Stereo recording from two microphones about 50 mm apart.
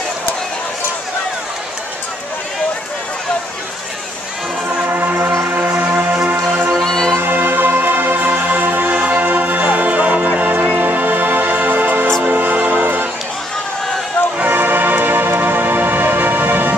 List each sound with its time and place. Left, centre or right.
4.8 s music: right
6.8 s music: centre
7.2 s music: right
14.5 s music: right